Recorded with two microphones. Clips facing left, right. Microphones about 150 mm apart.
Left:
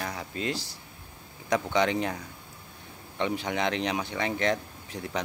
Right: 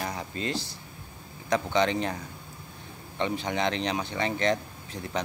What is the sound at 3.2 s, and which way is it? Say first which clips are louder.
Speech: even; 10° left (ahead or behind).